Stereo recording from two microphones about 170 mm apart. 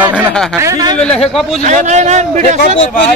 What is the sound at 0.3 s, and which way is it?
Speech, 5° left (ahead or behind).